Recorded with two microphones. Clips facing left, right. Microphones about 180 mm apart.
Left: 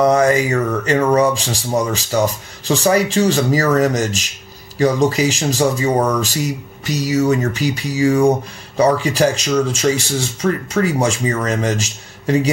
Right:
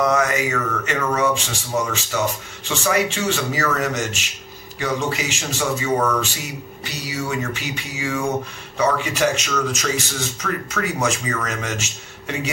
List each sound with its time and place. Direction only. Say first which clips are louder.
0.0 s speech: left 6 dB; 30° left (ahead or behind)